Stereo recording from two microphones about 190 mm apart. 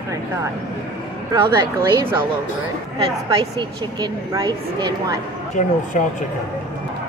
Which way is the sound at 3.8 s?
20° right (ahead or behind).